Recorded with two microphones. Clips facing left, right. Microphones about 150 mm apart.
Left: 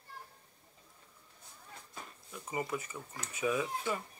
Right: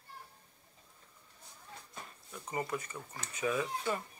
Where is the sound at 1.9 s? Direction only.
5° left (ahead or behind).